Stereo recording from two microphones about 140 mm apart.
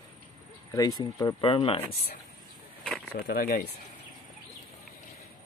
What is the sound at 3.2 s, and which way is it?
Speech, 90° left.